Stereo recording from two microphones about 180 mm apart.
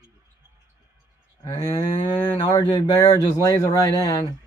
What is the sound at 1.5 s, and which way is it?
Cattle, 20° left (ahead or behind).